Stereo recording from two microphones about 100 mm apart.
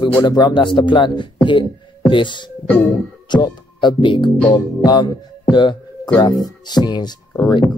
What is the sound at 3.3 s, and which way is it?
Speech, 50° left (ahead or behind).